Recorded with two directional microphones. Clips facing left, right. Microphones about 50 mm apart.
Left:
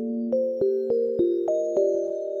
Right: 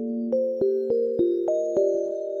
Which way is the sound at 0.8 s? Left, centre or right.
Left.